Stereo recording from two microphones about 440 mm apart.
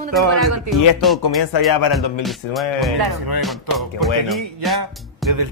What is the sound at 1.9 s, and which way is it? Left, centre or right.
Music, centre.